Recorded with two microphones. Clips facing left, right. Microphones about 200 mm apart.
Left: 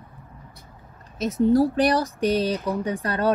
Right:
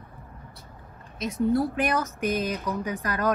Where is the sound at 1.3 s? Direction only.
30° left (ahead or behind).